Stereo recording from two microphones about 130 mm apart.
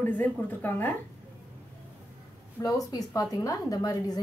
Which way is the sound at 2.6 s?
25° left (ahead or behind).